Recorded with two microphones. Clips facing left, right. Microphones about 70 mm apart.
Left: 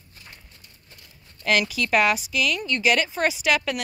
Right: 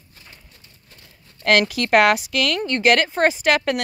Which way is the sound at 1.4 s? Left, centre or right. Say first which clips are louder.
Right 5 dB; right.